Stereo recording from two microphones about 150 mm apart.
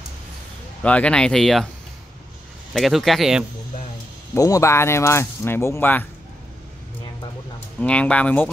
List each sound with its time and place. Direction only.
0.8 s speech: 10° left (ahead or behind)
2.7 s speech: centre (ahead or behind)
4.3 s speech: 20° left (ahead or behind)
7.8 s speech: 10° left (ahead or behind)